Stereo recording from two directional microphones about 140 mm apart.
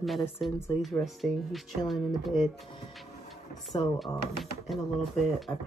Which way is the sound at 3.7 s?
30° left (ahead or behind).